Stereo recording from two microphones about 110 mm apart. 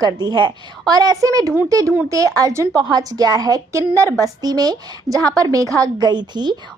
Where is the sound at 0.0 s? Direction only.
40° right (ahead or behind).